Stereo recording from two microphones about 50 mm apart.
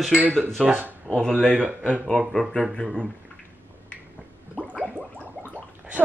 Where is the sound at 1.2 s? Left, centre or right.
Centre.